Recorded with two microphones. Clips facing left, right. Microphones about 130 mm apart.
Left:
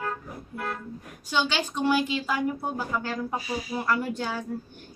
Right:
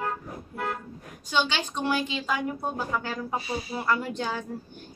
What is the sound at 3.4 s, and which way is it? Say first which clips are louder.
Speech: even; 30° right (ahead or behind).